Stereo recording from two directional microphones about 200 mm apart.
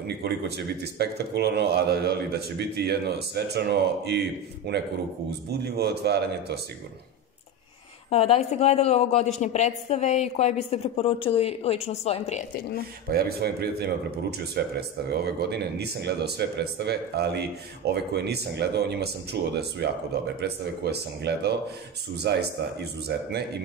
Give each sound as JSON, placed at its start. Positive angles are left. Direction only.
{"t": 0.2, "sound": "speech", "side_deg": -55}
{"t": 8.1, "sound": "a woman's voice", "side_deg": 30}
{"t": 13.1, "sound": "speech", "side_deg": -50}